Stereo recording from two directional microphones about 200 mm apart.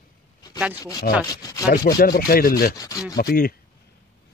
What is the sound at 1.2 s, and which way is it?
Sanding, 20° left (ahead or behind).